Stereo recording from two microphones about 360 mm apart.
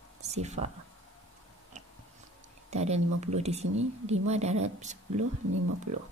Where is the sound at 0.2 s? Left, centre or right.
Centre.